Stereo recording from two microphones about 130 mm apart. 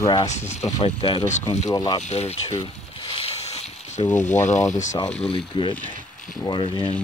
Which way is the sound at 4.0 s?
40° left (ahead or behind).